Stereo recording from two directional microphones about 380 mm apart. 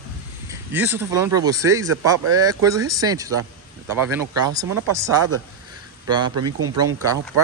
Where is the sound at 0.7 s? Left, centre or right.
Centre.